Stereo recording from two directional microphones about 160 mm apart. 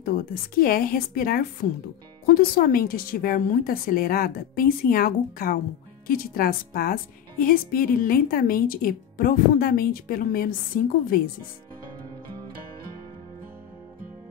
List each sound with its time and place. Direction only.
0.0 s a woman's voice: 70° left (ahead or behind)